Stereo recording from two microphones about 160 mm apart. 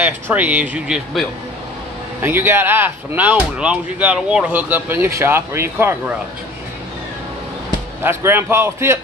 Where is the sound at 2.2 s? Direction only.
15° right (ahead or behind).